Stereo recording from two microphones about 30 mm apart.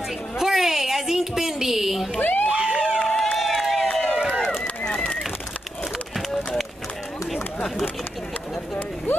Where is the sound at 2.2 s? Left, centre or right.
Left.